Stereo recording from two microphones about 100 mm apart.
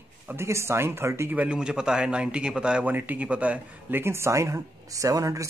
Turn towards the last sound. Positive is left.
turn(degrees=-35)  # may be behind; listen again after turning